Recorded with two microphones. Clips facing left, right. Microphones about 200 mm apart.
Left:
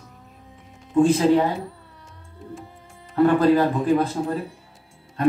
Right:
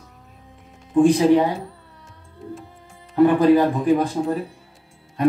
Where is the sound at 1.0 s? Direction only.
15° right (ahead or behind).